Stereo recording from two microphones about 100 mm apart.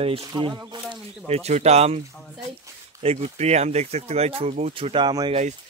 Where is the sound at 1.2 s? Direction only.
90° right.